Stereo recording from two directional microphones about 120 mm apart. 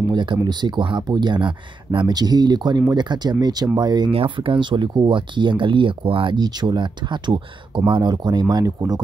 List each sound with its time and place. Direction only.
0.1 s speech: 40° right (ahead or behind)
4.1 s speech: 50° right (ahead or behind); by 9.0 s 35° right (ahead or behind)